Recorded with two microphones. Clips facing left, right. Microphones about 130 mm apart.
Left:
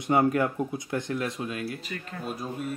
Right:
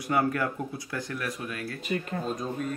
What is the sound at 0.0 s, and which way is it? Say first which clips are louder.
Speech: left 3 dB; 25° left (ahead or behind).